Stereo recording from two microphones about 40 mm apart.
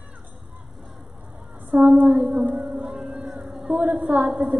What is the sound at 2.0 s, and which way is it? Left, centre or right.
Speech, right.